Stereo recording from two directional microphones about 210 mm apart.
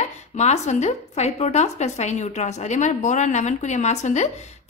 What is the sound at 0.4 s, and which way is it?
A woman's voice, 35° left (ahead or behind).